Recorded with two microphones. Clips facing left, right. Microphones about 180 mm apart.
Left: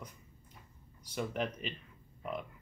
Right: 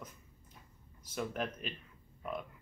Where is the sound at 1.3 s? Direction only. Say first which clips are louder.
Left 2 dB; 5° right (ahead or behind).